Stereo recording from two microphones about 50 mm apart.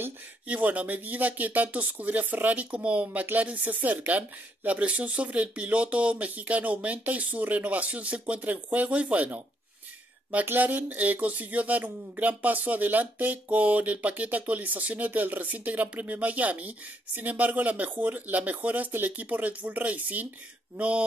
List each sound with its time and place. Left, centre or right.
0.5 s speech: right
10.4 s speech: right